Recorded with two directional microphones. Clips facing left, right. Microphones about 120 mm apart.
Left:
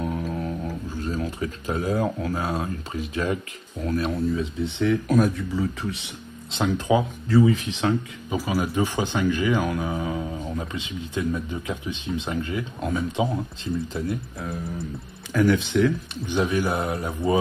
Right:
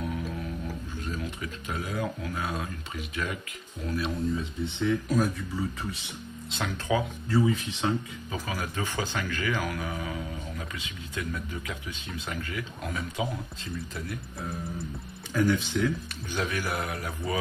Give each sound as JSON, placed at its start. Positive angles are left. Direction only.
{"t": 0.0, "sound": "music", "side_deg": 40}
{"t": 1.0, "sound": "speech", "side_deg": 35}
{"t": 3.8, "sound": "speech", "side_deg": 45}
{"t": 4.7, "sound": "speech", "side_deg": 75}
{"t": 6.5, "sound": "speech", "side_deg": 25}
{"t": 7.2, "sound": "speech", "side_deg": 75}
{"t": 8.4, "sound": "speech", "side_deg": 10}
{"t": 15.3, "sound": "speech", "side_deg": 90}
{"t": 16.3, "sound": "speech", "side_deg": 25}